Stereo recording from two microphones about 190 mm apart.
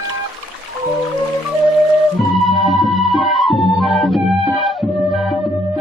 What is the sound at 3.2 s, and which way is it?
Music, centre (ahead or behind).